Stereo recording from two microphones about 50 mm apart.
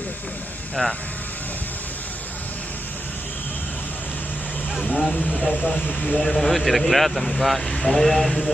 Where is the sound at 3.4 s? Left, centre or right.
Left.